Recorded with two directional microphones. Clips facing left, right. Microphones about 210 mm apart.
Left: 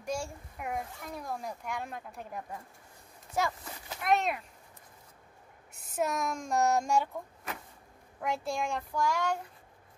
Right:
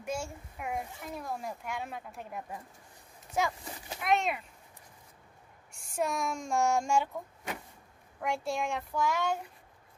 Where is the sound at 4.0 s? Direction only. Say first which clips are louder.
Left 1 dB; centre (ahead or behind).